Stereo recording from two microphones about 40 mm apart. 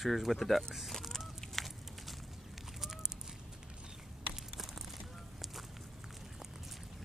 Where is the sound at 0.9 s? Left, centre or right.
Centre.